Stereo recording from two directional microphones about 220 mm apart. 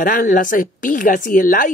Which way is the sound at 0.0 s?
40° left (ahead or behind).